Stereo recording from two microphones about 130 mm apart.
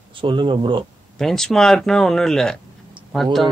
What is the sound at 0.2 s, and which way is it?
Speech, 40° right (ahead or behind).